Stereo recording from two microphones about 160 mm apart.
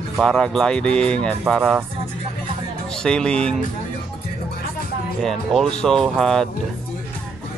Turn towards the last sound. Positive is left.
turn(degrees=0)  # may be behind; listen again after turning